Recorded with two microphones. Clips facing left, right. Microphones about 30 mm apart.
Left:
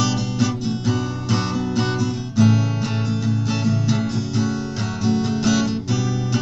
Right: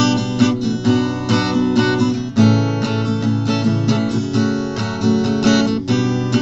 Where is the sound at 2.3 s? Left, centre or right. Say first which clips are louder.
Right 2 dB; right.